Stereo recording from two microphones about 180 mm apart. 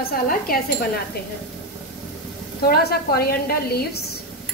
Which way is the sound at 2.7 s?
60° left (ahead or behind).